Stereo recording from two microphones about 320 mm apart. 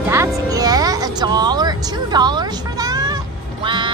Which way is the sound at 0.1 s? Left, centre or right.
Centre.